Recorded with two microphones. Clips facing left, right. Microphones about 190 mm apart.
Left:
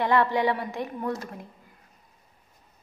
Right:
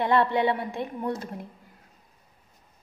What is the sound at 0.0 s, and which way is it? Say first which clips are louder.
A woman's voice: even; 20° right (ahead or behind).